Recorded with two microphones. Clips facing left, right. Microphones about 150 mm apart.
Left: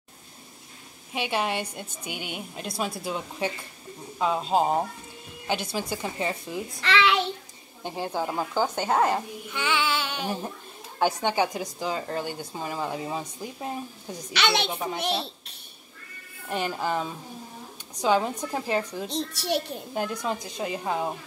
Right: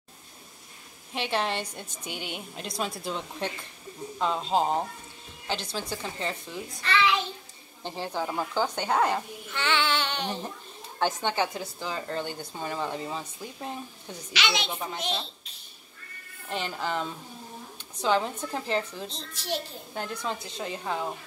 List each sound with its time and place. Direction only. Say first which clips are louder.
1.1 s speech: left 1 dB; 5° left (ahead or behind)
6.8 s a child's voice: left 2 dB; 80° left
7.8 s speech: left 2 dB; 10° left (ahead or behind)
14.3 s a woman's voice: left 4 dB; 60° left (ahead or behind)
14.7 s speech: left 4 dB; 10° left (ahead or behind)
16.4 s speech: left 4 dB; 10° left (ahead or behind)
19.0 s a child's voice: left 6 dB; 70° left (ahead or behind)
19.9 s speech: left 4 dB; 10° left (ahead or behind)